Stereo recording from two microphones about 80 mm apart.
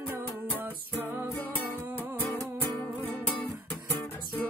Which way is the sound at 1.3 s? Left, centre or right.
Left.